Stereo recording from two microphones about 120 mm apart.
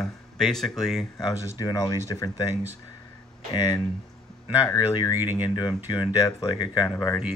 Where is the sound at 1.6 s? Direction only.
35° left (ahead or behind).